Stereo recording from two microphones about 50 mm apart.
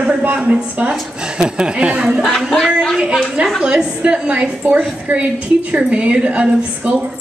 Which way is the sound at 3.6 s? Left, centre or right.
Centre.